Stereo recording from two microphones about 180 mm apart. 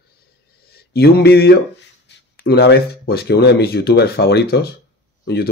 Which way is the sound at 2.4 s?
65° left (ahead or behind).